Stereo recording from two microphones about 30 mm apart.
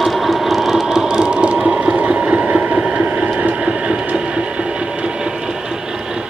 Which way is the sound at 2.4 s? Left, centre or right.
Right.